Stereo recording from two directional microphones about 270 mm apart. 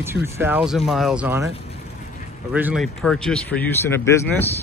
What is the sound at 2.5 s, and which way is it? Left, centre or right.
Speech, centre.